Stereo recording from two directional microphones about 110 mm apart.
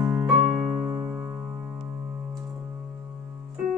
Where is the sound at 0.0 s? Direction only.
25° right (ahead or behind).